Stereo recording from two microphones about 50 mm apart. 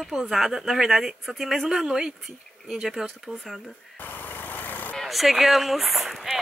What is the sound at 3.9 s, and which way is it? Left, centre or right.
Vehicle, left.